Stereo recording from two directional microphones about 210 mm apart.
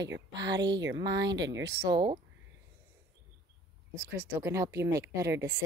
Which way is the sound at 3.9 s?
10° right (ahead or behind).